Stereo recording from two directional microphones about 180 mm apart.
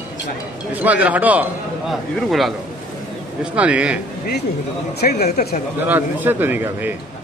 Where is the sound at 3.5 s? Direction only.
5° right (ahead or behind).